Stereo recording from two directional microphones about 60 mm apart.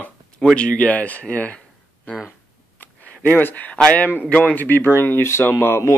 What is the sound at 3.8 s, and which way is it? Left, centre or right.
Speech, left.